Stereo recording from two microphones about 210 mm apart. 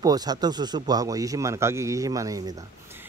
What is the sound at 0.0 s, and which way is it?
Speech, 20° right (ahead or behind).